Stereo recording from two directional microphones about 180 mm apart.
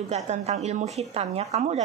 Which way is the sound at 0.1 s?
40° right (ahead or behind).